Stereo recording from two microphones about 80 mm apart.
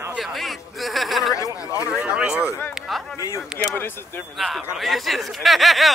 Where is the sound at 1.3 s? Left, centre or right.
Left.